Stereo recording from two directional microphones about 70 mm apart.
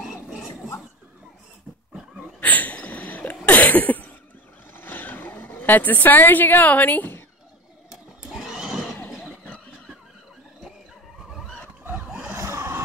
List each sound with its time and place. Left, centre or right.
0.0 s dog: centre
2.4 s a sound: left
4.7 s vehicle: left
7.9 s neigh: centre
11.9 s a sound: centre
12.3 s vehicle: right